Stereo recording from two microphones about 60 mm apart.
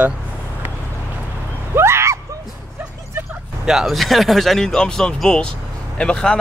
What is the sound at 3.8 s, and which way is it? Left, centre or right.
Speech, centre.